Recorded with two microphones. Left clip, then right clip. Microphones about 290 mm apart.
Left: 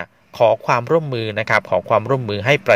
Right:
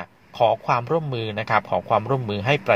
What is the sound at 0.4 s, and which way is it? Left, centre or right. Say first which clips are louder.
Speech: left 4 dB; left.